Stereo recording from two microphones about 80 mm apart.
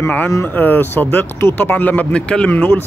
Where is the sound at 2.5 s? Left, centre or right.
Left.